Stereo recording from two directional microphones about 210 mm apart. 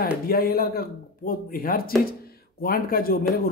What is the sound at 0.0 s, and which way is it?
Speech, 45° left (ahead or behind).